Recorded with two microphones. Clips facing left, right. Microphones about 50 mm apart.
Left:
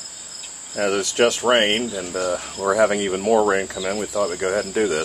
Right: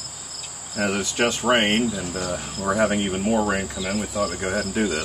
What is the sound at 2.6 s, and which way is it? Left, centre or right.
Speech, left.